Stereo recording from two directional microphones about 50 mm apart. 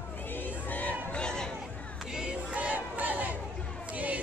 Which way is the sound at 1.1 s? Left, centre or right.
Centre.